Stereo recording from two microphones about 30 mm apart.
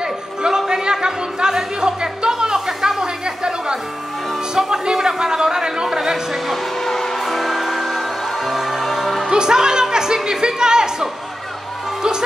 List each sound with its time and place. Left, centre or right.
0.0 s a sound: right
7.2 s music: centre
9.3 s music: right